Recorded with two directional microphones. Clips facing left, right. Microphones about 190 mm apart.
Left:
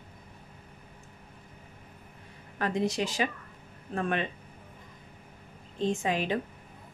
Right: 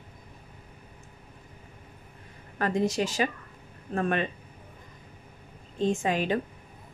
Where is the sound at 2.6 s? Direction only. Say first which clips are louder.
Right 3 dB; 45° right (ahead or behind).